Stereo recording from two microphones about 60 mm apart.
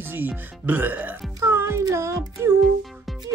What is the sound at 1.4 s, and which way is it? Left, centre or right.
Music, right.